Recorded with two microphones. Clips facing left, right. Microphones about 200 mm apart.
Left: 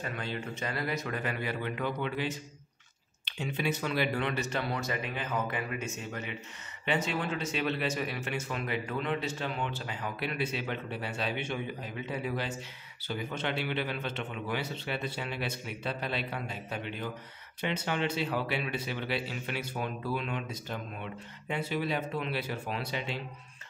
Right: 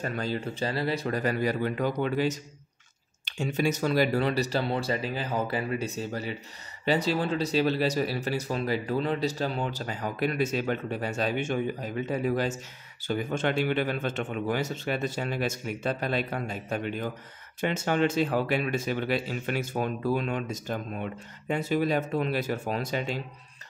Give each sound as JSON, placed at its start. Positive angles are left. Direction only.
{"t": 0.0, "sound": "speech", "side_deg": -40}